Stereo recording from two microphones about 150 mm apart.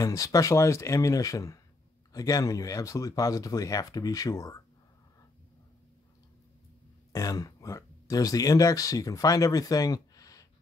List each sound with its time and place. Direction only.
0.0 s speech: 20° left (ahead or behind)
7.1 s speech: 25° left (ahead or behind)